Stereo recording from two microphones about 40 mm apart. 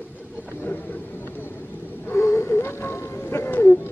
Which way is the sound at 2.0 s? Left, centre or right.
Left.